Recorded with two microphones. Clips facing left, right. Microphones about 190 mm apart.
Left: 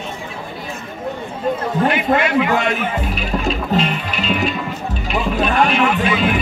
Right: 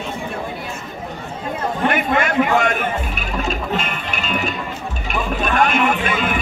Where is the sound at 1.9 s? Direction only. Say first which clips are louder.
Left 1 dB; 50° right (ahead or behind).